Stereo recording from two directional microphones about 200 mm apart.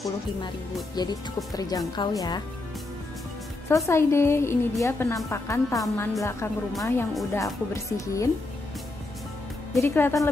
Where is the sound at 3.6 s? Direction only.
15° left (ahead or behind).